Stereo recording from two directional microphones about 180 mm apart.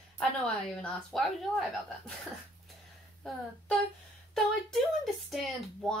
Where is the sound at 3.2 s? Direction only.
5° left (ahead or behind).